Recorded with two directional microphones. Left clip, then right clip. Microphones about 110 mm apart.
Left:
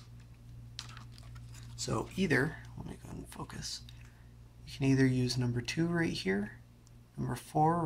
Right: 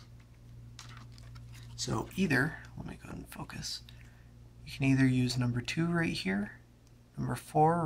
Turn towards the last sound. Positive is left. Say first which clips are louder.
# right 3 dB
turn(degrees=-25)  # may be behind; listen again after turning